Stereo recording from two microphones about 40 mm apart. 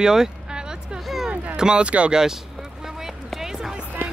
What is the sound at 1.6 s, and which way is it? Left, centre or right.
Speech, right.